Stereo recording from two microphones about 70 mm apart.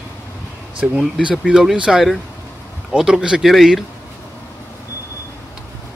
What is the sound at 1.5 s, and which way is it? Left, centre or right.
Speech, centre.